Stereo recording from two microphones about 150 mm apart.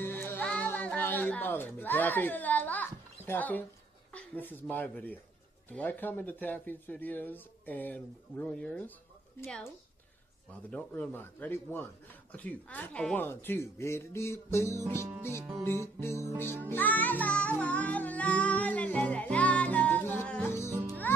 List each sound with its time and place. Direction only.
0.0 s music: 15° left (ahead or behind)
4.1 s speech: 10° left (ahead or behind)
5.7 s music: 10° left (ahead or behind)
10.7 s music: 10° left (ahead or behind)
20.7 s music: 20° right (ahead or behind)